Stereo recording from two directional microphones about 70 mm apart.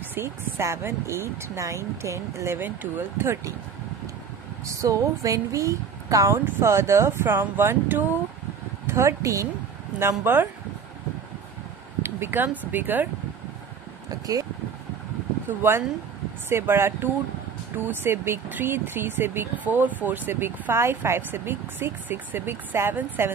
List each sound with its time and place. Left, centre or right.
0.1 s speech: right
2.6 s speech: right
4.6 s speech: right
6.6 s speech: right
8.8 s speech: right
9.9 s speech: right
12.0 s speech: right
15.6 s speech: right